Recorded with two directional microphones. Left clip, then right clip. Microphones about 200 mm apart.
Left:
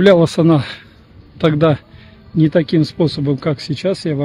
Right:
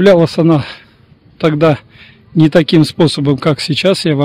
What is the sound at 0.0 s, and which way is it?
Speech, 20° right (ahead or behind).